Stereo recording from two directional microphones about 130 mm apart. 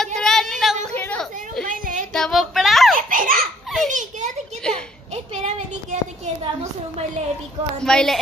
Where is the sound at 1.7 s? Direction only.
85° right.